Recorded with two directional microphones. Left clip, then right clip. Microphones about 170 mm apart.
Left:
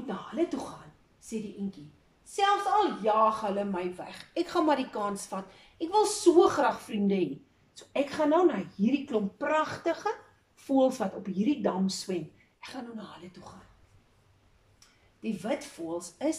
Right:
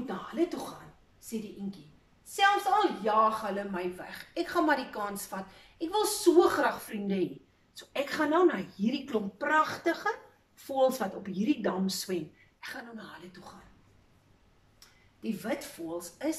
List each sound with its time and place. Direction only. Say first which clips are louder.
0.0 s a sound: even; 15° left (ahead or behind)
2.3 s speech: even; 15° left (ahead or behind)
15.2 s speech: left 2 dB; 15° left (ahead or behind)